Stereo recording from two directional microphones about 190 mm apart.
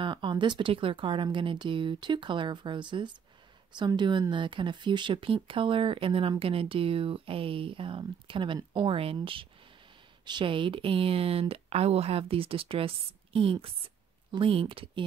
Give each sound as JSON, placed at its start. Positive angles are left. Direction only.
{"t": 0.0, "sound": "speech", "side_deg": -25}